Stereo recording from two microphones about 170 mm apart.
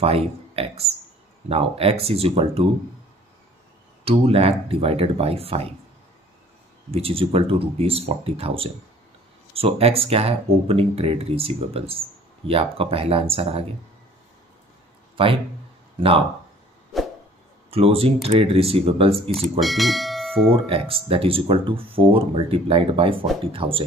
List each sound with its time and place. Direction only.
0.0 s speech: 35° right (ahead or behind)
4.0 s speech: 35° right (ahead or behind)
6.9 s speech: 35° right (ahead or behind)
17.6 s speech: 35° right (ahead or behind)
19.6 s speech: centre (ahead or behind)
20.5 s speech: 35° right (ahead or behind)